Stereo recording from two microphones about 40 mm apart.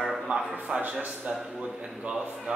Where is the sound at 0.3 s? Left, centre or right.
Right.